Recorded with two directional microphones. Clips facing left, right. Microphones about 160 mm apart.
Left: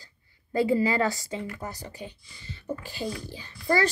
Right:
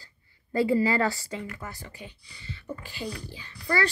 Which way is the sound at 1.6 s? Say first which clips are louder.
Left 4 dB; 40° left (ahead or behind).